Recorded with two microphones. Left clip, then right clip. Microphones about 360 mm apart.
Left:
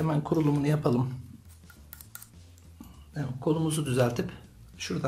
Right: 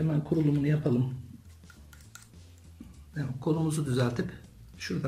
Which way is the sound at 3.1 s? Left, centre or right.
Centre.